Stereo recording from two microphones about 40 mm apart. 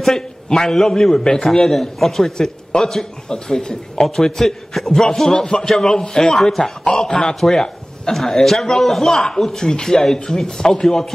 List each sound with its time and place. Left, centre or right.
0.0 s a man's voice: centre